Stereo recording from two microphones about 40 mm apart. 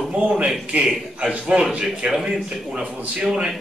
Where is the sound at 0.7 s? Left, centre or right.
Right.